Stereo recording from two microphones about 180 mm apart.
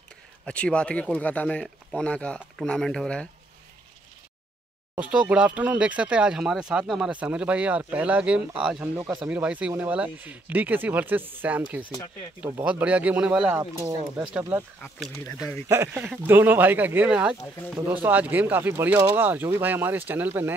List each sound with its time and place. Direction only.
0.5 s speech: 5° left (ahead or behind)
4.9 s speech: 5° right (ahead or behind)
11.8 s speech: 25° left (ahead or behind)
12.4 s speech: 10° right (ahead or behind)
15.7 s speech: 15° right (ahead or behind)